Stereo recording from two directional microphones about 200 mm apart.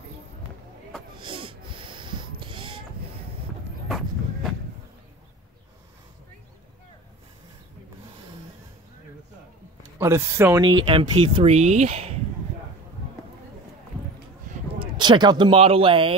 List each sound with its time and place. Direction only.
1.1 s snort: 25° right (ahead or behind)
3.9 s a sound: centre (ahead or behind)
9.9 s speech: 15° right (ahead or behind)
10.6 s speech: 25° right (ahead or behind)
14.8 s speech: 20° right (ahead or behind)